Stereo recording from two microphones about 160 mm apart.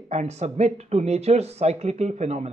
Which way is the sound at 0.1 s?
45° right (ahead or behind).